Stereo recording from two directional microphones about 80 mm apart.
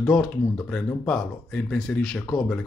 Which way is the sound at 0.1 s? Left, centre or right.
Centre.